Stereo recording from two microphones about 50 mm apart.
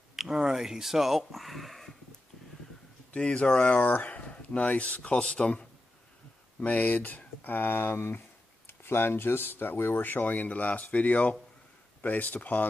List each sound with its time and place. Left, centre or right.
0.1 s speech: centre
3.2 s speech: left